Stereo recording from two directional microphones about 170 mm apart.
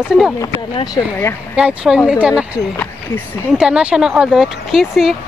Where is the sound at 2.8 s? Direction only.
10° left (ahead or behind).